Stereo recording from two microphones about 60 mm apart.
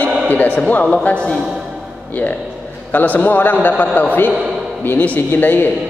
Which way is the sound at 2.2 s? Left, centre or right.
Left.